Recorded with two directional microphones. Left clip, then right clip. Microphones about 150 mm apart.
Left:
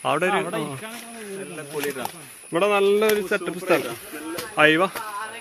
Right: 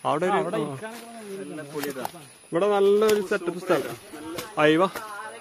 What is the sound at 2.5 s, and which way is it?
Speech, 30° right (ahead or behind).